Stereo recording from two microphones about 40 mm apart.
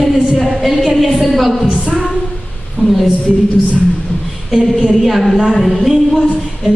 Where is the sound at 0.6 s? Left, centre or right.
Centre.